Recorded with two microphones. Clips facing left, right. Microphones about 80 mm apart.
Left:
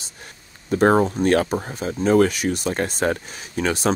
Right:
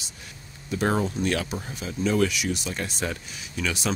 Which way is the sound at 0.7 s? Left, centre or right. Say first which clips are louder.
Left 8 dB; left.